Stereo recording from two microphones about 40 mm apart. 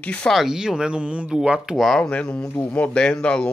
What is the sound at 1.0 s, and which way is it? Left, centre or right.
Speech, right.